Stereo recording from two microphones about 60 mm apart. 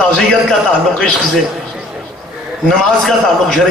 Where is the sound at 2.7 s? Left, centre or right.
Centre.